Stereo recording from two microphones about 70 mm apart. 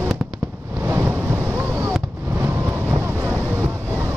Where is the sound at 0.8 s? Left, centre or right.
Right.